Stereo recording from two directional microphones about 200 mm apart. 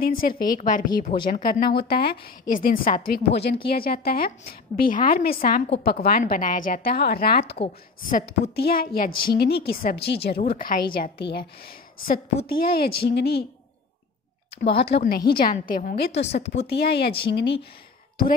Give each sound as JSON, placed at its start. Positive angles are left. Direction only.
{"t": 0.0, "sound": "a woman's voice", "side_deg": 45}
{"t": 14.7, "sound": "speech", "side_deg": 30}
{"t": 15.0, "sound": "a woman's voice", "side_deg": 50}
{"t": 16.6, "sound": "a woman's voice", "side_deg": 55}